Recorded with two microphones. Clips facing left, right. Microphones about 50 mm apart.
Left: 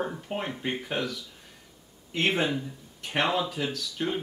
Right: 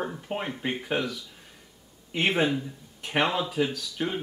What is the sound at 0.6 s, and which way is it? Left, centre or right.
Speech, centre.